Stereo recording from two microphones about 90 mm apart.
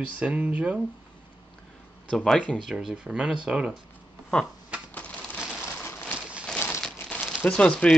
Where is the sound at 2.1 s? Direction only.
5° left (ahead or behind).